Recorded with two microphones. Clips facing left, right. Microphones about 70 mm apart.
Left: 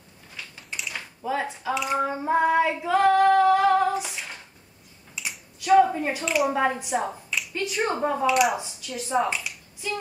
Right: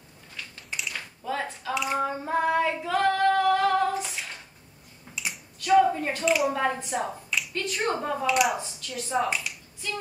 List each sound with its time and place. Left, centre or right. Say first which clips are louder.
0.6 s a sound: even; centre
0.9 s a sound: left 4 dB; centre
1.8 s a woman's voice: left 1 dB; centre
2.2 s female singing: left 4 dB; centre
5.1 s finger snapping: even; centre
5.9 s a woman's voice: right 2 dB; centre
8.3 s a woman's voice: left 1 dB; centre